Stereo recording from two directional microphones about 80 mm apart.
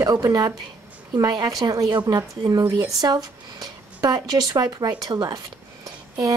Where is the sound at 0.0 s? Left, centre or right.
Right.